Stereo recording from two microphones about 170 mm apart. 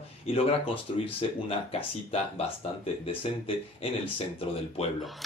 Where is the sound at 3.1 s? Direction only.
35° left (ahead or behind).